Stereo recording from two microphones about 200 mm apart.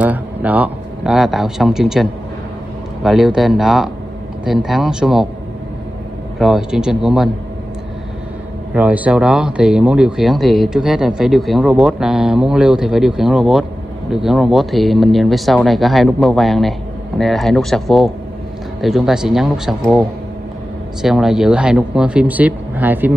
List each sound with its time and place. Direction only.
0.0 s speech: 10° right (ahead or behind)
6.4 s speech: 5° right (ahead or behind)
8.7 s speech: 5° right (ahead or behind)